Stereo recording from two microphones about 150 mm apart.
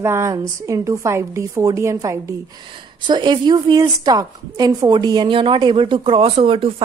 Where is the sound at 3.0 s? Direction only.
30° right (ahead or behind).